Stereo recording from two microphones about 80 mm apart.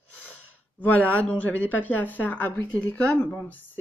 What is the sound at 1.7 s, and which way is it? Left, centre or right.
Speech, left.